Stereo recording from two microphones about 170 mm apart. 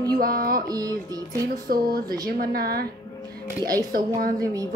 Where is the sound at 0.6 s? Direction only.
20° right (ahead or behind).